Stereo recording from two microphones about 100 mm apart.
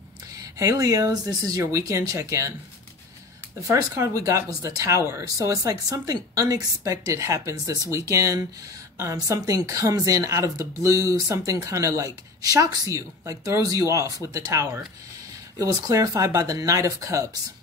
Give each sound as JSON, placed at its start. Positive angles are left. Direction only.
{"t": 0.4, "sound": "speech", "side_deg": -35}
{"t": 3.6, "sound": "speech", "side_deg": -30}